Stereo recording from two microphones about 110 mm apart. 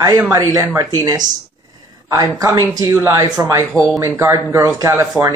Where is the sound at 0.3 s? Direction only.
30° right (ahead or behind).